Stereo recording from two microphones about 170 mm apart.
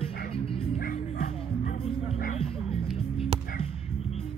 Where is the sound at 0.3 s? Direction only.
35° left (ahead or behind).